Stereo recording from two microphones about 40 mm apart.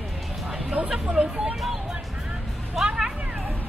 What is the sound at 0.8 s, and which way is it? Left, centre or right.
Chatter, right.